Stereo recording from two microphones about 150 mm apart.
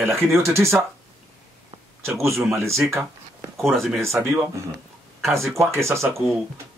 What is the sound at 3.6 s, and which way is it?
Speech, centre (ahead or behind).